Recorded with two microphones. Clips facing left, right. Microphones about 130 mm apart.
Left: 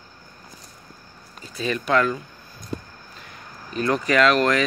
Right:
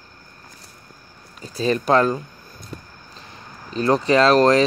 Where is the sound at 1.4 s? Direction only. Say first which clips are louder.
Right 5 dB; 35° right (ahead or behind).